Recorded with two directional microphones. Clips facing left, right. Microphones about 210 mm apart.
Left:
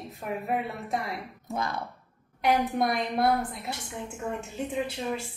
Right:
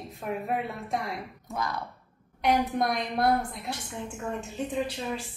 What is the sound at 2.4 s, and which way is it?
A woman's voice, centre (ahead or behind).